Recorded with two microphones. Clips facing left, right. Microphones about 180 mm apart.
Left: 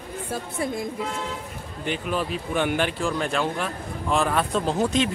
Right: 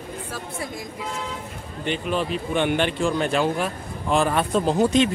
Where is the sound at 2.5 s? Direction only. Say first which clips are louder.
Right 2 dB; 5° left (ahead or behind).